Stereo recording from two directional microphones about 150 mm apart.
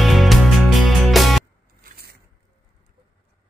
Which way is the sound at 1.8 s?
90° right.